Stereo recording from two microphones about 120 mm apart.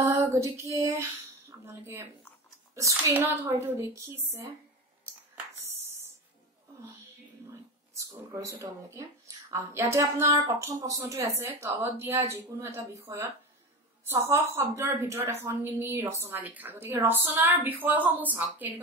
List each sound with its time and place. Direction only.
0.0 s female singing: 25° right (ahead or behind)
1.5 s a woman's voice: 20° right (ahead or behind)
8.0 s a woman's voice: 25° right (ahead or behind)